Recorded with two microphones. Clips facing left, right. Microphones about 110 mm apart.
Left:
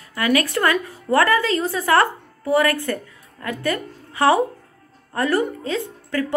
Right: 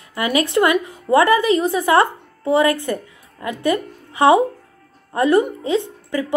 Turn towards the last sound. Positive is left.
turn(degrees=-20)  # may be behind; listen again after turning